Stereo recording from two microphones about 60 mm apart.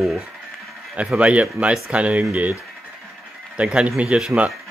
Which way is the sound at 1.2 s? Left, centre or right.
Right.